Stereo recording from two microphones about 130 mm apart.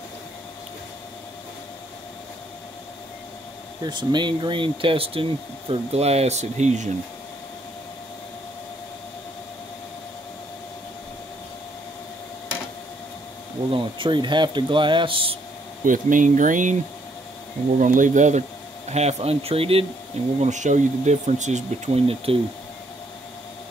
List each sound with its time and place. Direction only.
3.8 s speech: 35° right (ahead or behind); by 6.9 s 65° right (ahead or behind)
13.7 s speech: 40° right (ahead or behind)
15.8 s speech: 90° right
17.7 s speech: 80° right
18.9 s speech: 55° right (ahead or behind)
20.3 s speech: 65° right (ahead or behind); by 22.4 s 50° right (ahead or behind)